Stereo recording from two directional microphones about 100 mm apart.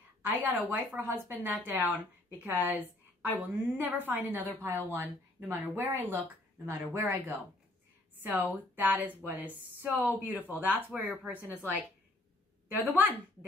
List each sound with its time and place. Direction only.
0.4 s a woman's voice: 20° right (ahead or behind)
12.6 s a woman's voice: 15° right (ahead or behind)